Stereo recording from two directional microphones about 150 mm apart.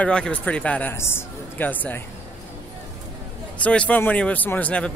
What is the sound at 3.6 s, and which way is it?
Speech, 10° left (ahead or behind).